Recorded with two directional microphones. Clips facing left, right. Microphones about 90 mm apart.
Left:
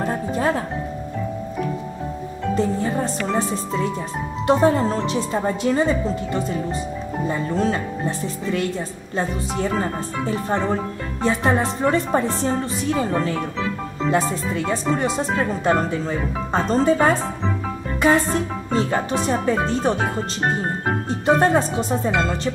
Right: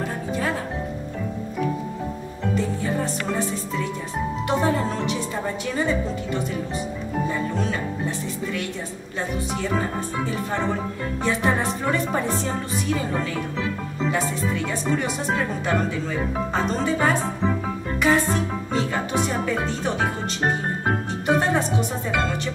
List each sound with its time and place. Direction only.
0.0 s music: 35° left (ahead or behind)
4.5 s speech: 35° left (ahead or behind)
7.2 s speech: 35° left (ahead or behind)
9.1 s speech: 35° left (ahead or behind)
11.2 s speech: 30° left (ahead or behind)
14.1 s speech: 30° left (ahead or behind)
18.7 s speech: 35° left (ahead or behind)
21.4 s speech: 35° left (ahead or behind)